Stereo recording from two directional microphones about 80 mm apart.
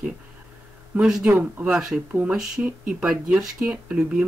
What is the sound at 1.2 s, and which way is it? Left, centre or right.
Speech, right.